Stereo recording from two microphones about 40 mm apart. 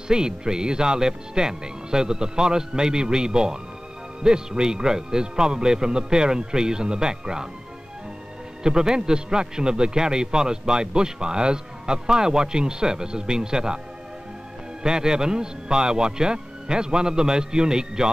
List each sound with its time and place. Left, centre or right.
0.1 s a man's voice: centre
8.6 s a man's voice: centre
14.8 s a man's voice: centre